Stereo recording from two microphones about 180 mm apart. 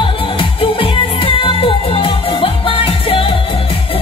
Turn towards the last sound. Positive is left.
turn(degrees=30)  # may be behind; listen again after turning